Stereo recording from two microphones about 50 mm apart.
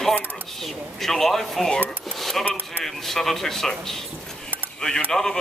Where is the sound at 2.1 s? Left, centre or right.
Centre.